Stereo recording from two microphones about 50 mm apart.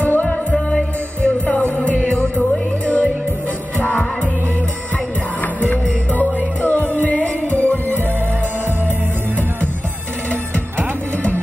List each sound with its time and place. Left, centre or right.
0.0 s music: left
5.4 s music: left